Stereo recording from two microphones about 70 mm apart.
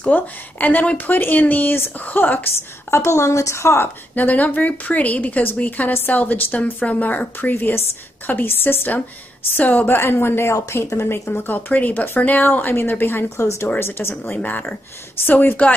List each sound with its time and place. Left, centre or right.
0.0 s speech: left
4.1 s a man's voice: left
10.5 s speech: left
10.9 s a man's voice: left